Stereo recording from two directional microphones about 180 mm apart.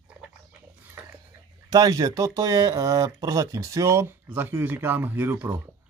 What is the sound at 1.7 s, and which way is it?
Speech, 20° right (ahead or behind).